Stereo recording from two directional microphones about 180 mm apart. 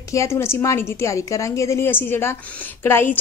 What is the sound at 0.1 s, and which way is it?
A woman's voice, 15° left (ahead or behind).